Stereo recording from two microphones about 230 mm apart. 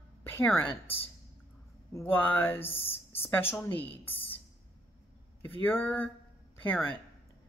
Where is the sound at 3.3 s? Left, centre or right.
Centre.